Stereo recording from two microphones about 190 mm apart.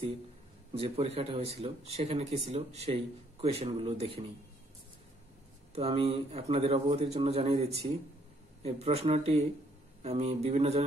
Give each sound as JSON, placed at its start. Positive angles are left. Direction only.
{"t": 0.7, "sound": "speech", "side_deg": -30}
{"t": 5.8, "sound": "speech", "side_deg": -30}
{"t": 8.6, "sound": "speech", "side_deg": -30}